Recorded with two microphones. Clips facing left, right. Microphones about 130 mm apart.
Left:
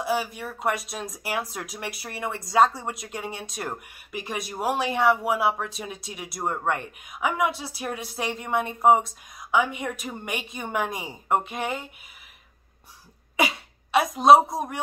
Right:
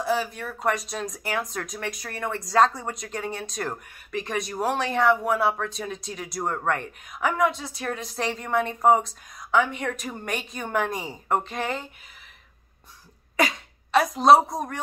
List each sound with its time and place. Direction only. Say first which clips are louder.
0.0 s speech: right 1 dB; 5° left (ahead or behind)
13.4 s speech: right 1 dB; 5° left (ahead or behind)